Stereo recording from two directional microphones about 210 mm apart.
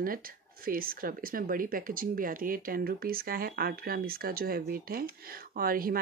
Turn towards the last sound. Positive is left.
turn(degrees=-45)  # may be behind; listen again after turning